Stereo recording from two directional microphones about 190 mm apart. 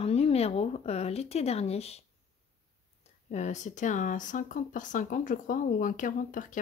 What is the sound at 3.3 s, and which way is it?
Speech, 40° left (ahead or behind).